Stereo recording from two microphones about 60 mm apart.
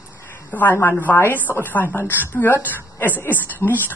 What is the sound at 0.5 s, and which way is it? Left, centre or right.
A woman's voice, left.